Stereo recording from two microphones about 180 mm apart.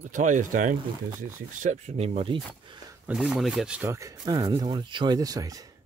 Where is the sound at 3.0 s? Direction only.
5° right (ahead or behind).